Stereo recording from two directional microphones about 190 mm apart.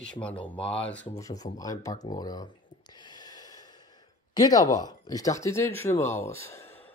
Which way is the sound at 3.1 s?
20° left (ahead or behind).